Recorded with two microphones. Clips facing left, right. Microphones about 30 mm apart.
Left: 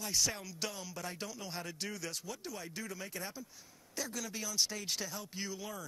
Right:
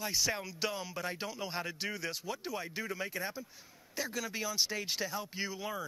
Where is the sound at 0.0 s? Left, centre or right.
Centre.